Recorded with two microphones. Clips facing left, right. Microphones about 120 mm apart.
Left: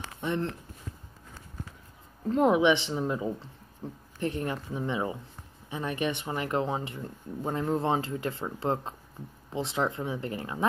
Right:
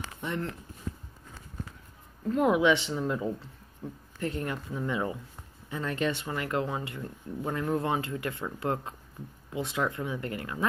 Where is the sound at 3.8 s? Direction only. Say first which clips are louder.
Even; 35° left (ahead or behind).